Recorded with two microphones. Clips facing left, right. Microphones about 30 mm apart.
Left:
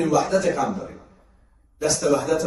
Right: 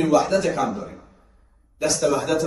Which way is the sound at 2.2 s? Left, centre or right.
Right.